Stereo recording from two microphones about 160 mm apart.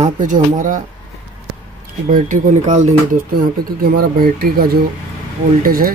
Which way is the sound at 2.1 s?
55° right (ahead or behind).